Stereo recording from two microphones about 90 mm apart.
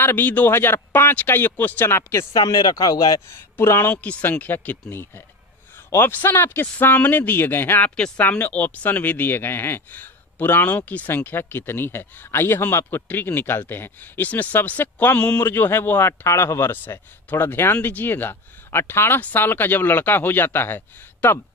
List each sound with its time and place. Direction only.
0.0 s speech: 20° left (ahead or behind)
2.3 s speech: 50° left (ahead or behind)
3.3 s speech: 25° left (ahead or behind)
3.9 s speech: 15° left (ahead or behind)